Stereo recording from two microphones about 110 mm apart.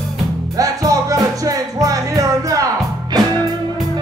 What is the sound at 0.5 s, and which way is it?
Music, 35° right (ahead or behind).